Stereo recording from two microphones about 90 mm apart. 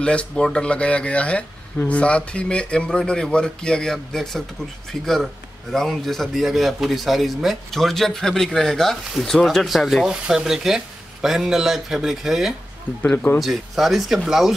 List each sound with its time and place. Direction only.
0.0 s a man's voice: 10° left (ahead or behind)
13.0 s speech: 15° left (ahead or behind)
13.4 s a man's voice: centre (ahead or behind)